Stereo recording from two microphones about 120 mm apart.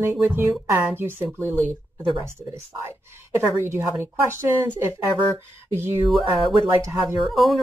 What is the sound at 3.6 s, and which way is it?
Speech, 20° right (ahead or behind).